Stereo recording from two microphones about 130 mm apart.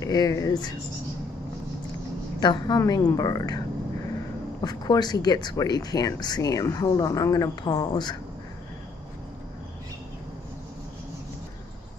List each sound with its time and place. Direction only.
0.0 s a woman's voice: 25° left (ahead or behind)
2.4 s a woman's voice: 30° left (ahead or behind)